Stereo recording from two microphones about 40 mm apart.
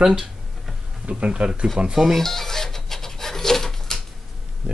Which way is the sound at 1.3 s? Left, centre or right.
Right.